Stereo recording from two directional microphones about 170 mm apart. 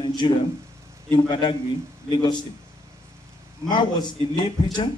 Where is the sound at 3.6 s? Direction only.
25° left (ahead or behind).